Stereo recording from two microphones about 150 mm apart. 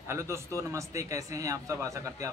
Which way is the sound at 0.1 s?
20° right (ahead or behind).